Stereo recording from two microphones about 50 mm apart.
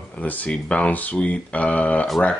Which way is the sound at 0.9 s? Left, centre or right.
Left.